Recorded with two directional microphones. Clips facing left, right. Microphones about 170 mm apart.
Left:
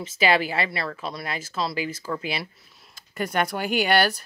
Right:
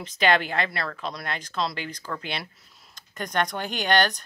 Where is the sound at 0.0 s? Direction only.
5° left (ahead or behind).